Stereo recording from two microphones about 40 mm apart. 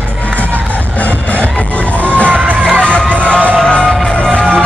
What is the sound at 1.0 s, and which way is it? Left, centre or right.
Music, left.